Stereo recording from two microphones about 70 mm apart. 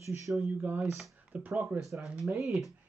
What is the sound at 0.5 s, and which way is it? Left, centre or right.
Speech, right.